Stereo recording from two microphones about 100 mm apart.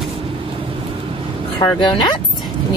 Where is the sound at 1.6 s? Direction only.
50° left (ahead or behind).